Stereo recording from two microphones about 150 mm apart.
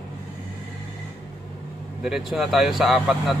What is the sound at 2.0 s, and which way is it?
A man's voice, centre (ahead or behind).